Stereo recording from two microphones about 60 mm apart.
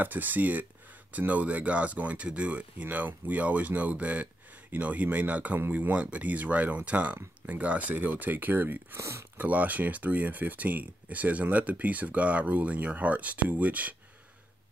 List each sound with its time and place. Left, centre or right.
0.0 s speech: right
8.9 s speech: right
9.4 s speech: right